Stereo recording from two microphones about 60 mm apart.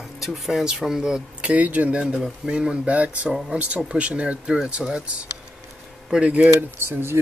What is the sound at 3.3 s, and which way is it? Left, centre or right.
Speech, centre.